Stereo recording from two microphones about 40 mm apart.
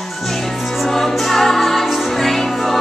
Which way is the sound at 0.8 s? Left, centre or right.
Centre.